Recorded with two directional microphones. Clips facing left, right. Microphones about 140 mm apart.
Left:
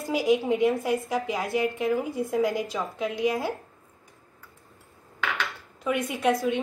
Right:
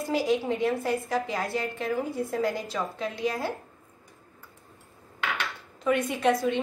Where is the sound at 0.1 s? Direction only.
15° left (ahead or behind).